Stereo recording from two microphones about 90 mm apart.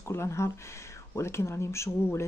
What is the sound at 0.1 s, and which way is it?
Speech, 30° left (ahead or behind).